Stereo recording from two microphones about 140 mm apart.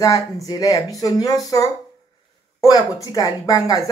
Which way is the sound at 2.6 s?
30° left (ahead or behind).